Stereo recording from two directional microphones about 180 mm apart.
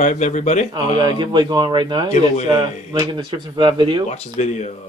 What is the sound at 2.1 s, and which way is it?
Speech, 40° left (ahead or behind).